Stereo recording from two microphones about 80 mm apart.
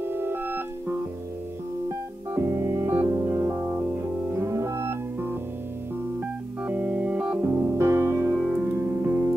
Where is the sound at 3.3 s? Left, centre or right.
Right.